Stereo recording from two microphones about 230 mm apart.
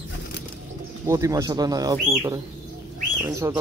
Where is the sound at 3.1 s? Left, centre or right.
Centre.